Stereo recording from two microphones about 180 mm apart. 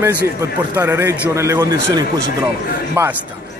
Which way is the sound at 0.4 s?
15° right (ahead or behind).